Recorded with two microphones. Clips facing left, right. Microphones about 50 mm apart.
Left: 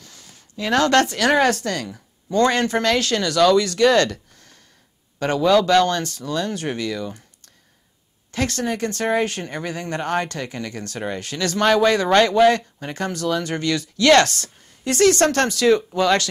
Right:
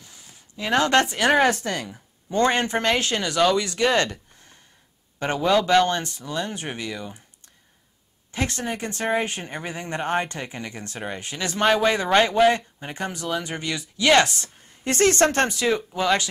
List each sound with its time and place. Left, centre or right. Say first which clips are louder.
0.0 s a sound: left 2 dB; centre
1.3 s speech: left 1 dB; centre
14.7 s speech: left 4 dB; right